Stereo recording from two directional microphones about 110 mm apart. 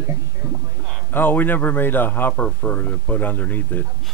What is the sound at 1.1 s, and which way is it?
Speech, 15° left (ahead or behind).